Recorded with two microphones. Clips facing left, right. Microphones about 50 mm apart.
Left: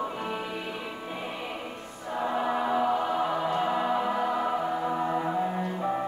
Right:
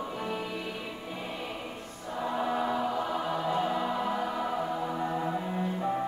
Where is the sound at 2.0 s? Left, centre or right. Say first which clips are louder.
Left 3 dB; left.